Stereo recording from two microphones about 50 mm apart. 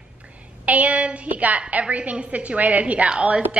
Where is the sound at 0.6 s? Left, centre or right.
Right.